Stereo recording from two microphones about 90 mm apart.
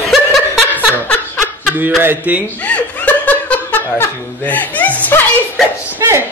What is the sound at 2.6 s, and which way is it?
Laughter, 15° left (ahead or behind).